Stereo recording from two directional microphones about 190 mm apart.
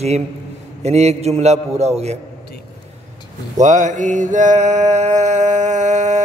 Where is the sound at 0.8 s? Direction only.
35° right (ahead or behind).